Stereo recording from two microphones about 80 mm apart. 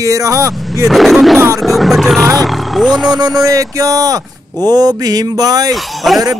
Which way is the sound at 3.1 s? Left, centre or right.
Right.